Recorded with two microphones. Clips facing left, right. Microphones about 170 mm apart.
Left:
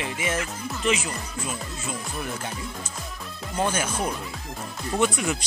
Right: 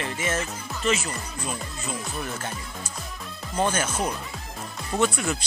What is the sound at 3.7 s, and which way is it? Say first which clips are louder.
Speech: even; 10° left (ahead or behind).